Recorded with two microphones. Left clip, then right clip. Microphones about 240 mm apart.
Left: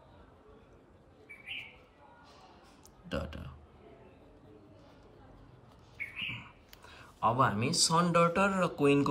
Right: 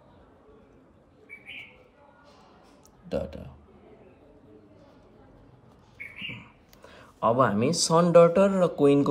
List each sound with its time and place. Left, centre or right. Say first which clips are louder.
3.1 s a man's voice: right 7 dB; centre
6.9 s speech: right 6 dB; right
8.6 s speech: right 7 dB; centre